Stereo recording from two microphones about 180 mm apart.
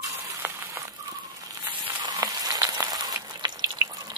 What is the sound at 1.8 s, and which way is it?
Frying, 25° right (ahead or behind).